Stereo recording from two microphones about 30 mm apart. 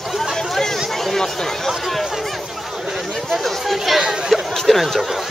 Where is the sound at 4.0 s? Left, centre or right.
Centre.